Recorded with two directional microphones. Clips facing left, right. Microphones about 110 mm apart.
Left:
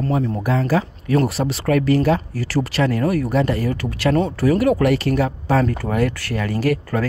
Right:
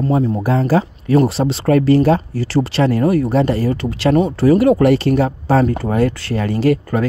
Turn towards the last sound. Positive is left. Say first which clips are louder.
# right 4 dB
turn(degrees=-25)  # may be behind; listen again after turning